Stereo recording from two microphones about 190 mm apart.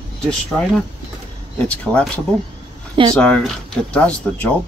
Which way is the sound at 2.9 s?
25° right (ahead or behind).